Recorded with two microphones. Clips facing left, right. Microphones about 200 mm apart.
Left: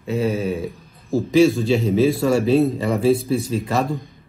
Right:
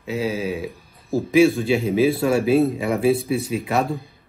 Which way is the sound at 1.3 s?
Centre (ahead or behind).